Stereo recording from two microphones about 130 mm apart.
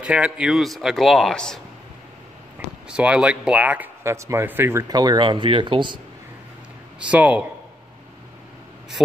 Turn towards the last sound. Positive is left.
turn(degrees=-10)  # may be behind; listen again after turning